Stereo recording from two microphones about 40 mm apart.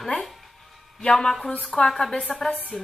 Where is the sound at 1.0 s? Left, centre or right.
Centre.